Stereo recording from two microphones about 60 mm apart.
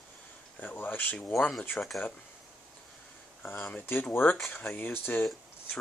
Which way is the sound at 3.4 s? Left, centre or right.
Left.